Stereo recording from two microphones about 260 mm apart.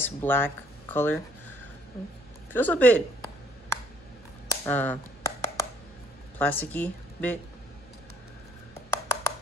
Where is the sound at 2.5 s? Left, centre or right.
Centre.